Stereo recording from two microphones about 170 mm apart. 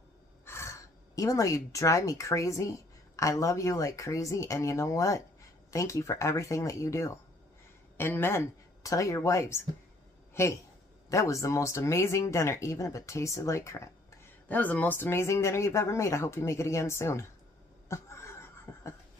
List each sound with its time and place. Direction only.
0.5 s speech: 15° left (ahead or behind)
17.8 s laughter: 15° left (ahead or behind)